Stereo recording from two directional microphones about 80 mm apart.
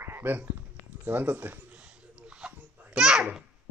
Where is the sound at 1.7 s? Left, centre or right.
Centre.